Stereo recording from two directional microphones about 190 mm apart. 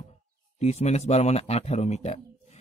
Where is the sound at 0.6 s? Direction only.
35° left (ahead or behind).